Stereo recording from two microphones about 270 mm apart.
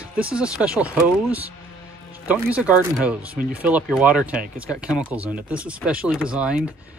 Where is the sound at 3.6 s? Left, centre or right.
Centre.